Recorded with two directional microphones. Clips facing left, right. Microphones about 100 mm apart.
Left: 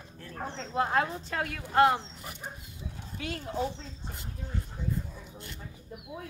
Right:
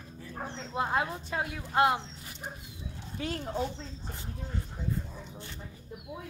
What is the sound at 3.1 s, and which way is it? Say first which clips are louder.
Speech: right 2 dB; 35° right (ahead or behind).